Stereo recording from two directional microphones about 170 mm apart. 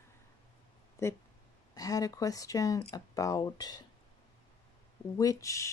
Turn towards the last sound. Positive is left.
turn(degrees=20)  # may be behind; listen again after turning